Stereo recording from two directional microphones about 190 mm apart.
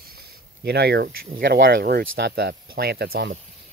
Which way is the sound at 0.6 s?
55° right (ahead or behind).